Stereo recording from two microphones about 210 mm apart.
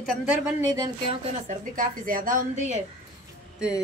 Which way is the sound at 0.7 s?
20° right (ahead or behind).